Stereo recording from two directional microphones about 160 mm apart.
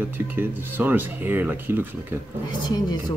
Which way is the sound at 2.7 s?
25° left (ahead or behind).